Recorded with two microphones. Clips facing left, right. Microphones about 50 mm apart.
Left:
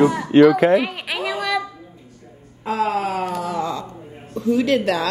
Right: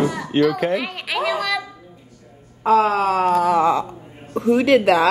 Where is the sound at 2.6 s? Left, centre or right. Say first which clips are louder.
Right 7 dB; right.